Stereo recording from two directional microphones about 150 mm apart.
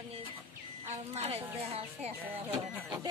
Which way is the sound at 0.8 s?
45° right (ahead or behind).